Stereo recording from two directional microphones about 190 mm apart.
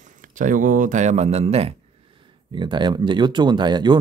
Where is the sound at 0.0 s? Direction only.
45° right (ahead or behind).